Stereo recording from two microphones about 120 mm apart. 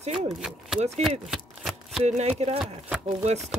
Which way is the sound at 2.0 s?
70° right (ahead or behind).